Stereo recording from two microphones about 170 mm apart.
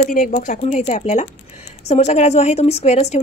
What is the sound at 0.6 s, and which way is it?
A woman's voice, 40° left (ahead or behind).